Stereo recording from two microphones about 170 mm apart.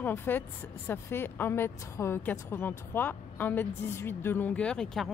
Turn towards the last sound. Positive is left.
turn(degrees=5)  # may be behind; listen again after turning